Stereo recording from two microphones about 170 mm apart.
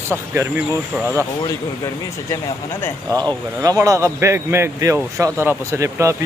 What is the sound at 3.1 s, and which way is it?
A man's voice, 20° right (ahead or behind).